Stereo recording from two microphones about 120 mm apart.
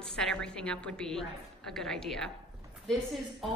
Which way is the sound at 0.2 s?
5° left (ahead or behind).